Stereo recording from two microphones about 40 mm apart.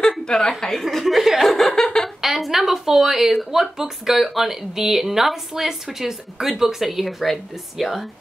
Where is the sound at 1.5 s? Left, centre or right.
Centre.